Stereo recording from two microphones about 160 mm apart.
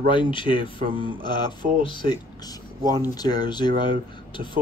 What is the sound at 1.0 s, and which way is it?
Speech, 25° left (ahead or behind).